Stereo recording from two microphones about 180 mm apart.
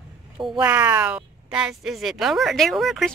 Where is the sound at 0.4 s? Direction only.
5° right (ahead or behind).